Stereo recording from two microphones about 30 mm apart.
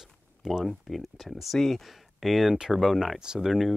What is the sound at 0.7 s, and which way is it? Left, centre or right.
Speech, centre.